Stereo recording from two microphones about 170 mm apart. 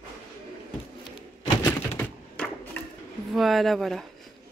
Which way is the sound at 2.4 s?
5° left (ahead or behind).